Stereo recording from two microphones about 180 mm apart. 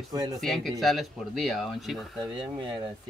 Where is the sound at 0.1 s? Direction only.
20° right (ahead or behind).